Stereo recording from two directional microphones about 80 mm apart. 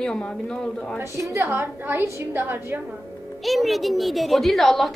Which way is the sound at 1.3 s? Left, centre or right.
Right.